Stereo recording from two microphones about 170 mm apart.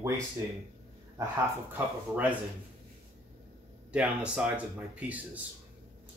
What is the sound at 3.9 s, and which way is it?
Speech, 5° right (ahead or behind).